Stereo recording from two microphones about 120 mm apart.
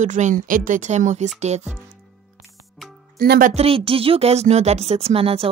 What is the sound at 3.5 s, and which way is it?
Speech, 55° right (ahead or behind).